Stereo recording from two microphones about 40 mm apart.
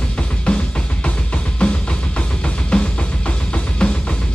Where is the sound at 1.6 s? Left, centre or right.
Left.